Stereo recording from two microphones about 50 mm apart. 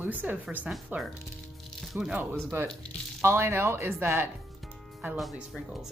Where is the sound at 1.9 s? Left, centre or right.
Right.